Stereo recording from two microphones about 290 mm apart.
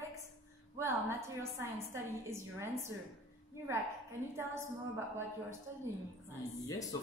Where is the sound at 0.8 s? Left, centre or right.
Centre.